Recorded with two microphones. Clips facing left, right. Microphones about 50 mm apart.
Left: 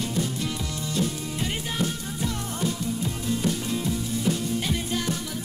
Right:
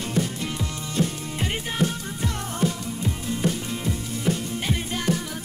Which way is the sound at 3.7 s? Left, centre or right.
Right.